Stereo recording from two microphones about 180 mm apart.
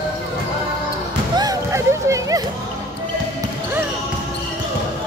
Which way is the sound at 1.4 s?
20° right (ahead or behind).